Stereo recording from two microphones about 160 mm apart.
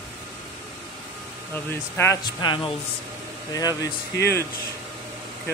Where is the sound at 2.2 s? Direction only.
30° left (ahead or behind).